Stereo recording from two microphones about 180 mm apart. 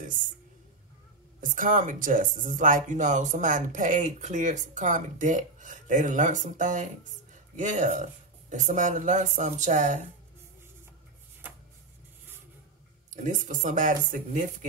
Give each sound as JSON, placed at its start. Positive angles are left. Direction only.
{"t": 1.4, "sound": "speech", "side_deg": -50}
{"t": 13.1, "sound": "speech", "side_deg": -45}